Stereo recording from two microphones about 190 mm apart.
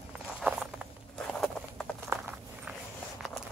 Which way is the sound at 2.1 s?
15° right (ahead or behind).